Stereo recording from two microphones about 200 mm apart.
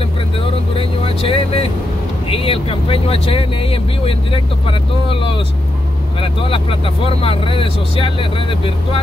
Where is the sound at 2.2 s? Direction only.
25° left (ahead or behind).